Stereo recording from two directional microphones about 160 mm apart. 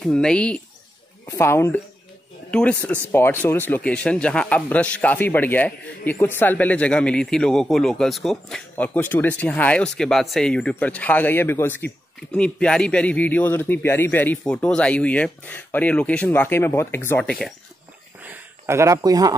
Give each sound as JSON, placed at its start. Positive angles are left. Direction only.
{"t": 0.0, "sound": "speech", "side_deg": 5}
{"t": 1.2, "sound": "speech", "side_deg": 20}
{"t": 18.2, "sound": "a sound", "side_deg": -15}